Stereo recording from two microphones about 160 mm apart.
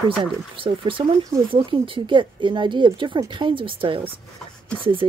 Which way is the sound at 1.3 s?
15° right (ahead or behind).